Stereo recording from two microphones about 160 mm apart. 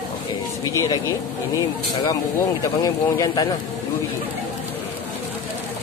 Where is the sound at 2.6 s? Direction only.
20° left (ahead or behind).